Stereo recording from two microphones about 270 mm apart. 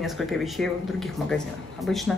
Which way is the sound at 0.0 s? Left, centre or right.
Centre.